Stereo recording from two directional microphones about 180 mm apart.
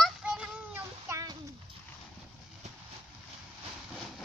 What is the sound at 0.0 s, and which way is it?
Child singing, 5° right (ahead or behind).